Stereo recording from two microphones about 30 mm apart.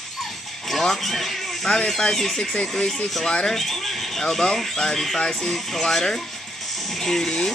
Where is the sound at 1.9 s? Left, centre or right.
Left.